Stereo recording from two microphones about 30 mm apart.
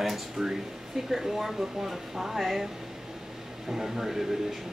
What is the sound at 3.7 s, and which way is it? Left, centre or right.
Speech, centre.